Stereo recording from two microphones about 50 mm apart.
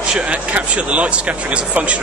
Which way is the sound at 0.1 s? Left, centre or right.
Right.